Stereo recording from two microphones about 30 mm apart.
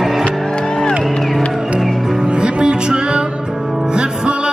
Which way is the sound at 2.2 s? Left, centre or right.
Right.